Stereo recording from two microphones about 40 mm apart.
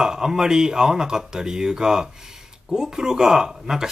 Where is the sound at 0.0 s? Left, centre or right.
Centre.